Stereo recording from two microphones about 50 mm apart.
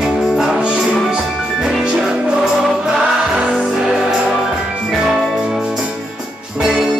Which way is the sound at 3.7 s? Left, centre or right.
Centre.